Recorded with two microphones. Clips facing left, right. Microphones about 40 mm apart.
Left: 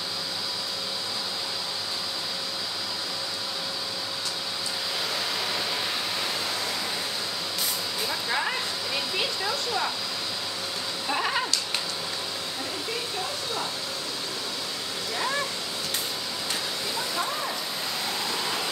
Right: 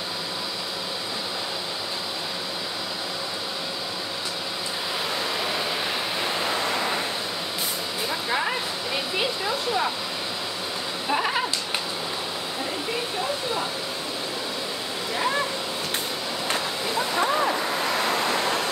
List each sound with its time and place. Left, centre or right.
6.2 s waves: right
8.1 s a sound: centre
11.1 s sheep: centre
15.1 s waterfall: centre
16.4 s vehicle: right
17.9 s vehicle: right